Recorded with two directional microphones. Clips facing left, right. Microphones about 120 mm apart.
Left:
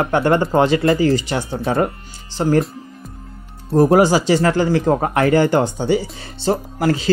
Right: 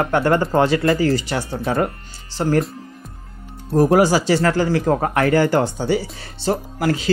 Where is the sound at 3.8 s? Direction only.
25° left (ahead or behind).